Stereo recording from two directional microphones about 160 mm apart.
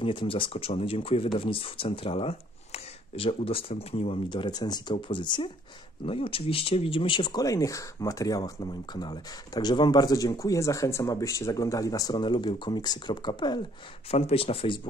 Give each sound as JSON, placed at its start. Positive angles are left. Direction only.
{"t": 0.0, "sound": "speech", "side_deg": 35}